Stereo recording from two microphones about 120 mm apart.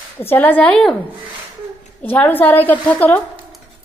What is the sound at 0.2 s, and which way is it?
Speech, 15° left (ahead or behind).